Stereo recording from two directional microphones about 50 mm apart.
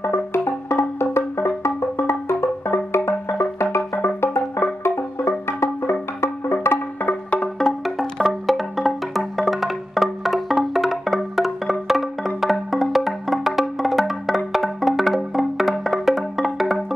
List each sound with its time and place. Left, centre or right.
0.0 s music: left
7.1 s music: left
7.5 s music: centre
8.2 s music: centre